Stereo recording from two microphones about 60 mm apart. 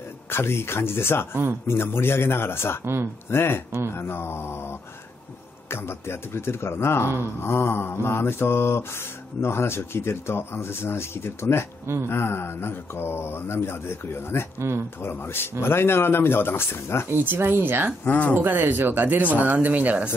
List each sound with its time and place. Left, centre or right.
0.3 s mantra: left
1.7 s speech: left
2.8 s speech: right
3.3 s speech: left
3.9 s mantra: left
11.8 s speech: right
12.1 s speech: left
14.6 s speech: right
15.0 s speech: left
17.1 s speech: right
18.0 s speech: left
18.3 s speech: right